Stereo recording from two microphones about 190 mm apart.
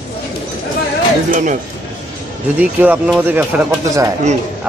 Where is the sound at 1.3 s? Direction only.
45° right (ahead or behind).